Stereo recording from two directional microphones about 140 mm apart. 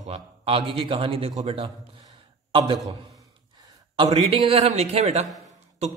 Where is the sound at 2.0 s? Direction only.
40° right (ahead or behind).